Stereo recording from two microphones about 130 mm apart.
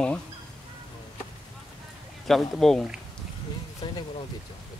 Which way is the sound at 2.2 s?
Centre (ahead or behind).